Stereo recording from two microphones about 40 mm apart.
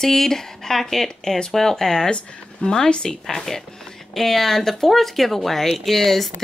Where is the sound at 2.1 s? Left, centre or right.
Left.